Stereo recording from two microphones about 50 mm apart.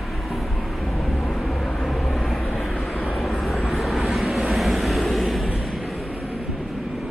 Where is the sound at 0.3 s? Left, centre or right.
Centre.